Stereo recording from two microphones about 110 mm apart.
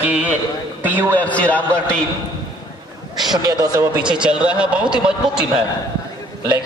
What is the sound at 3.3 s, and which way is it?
Speech, 40° right (ahead or behind).